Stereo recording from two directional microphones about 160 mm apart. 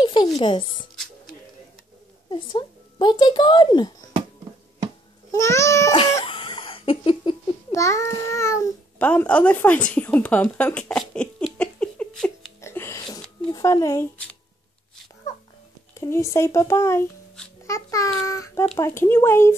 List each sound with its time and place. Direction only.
0.0 s music: 30° left (ahead or behind)
0.4 s speech: 30° left (ahead or behind)
2.2 s speech: 30° left (ahead or behind)
5.3 s a child's voice: 20° left (ahead or behind)
5.9 s giggle: 30° left (ahead or behind)
7.7 s a child's voice: 20° left (ahead or behind)
12.6 s music: 15° left (ahead or behind)
13.5 s speech: 25° left (ahead or behind)
16.0 s a child's voice: 20° left (ahead or behind)